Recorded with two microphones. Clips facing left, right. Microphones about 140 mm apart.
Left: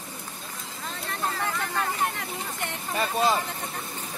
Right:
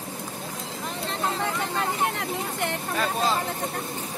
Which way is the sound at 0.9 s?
20° right (ahead or behind).